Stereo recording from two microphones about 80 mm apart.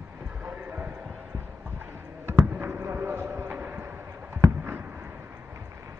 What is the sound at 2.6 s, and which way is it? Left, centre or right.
Clip-clop, right.